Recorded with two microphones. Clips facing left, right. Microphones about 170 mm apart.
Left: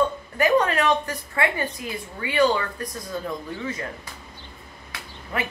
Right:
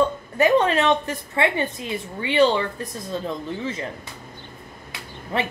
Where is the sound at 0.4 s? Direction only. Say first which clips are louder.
Right 2 dB; 25° right (ahead or behind).